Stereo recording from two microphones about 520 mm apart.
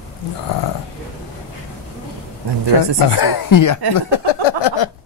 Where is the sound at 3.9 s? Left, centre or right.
Left.